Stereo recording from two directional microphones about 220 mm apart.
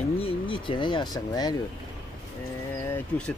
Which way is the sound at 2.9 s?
5° left (ahead or behind).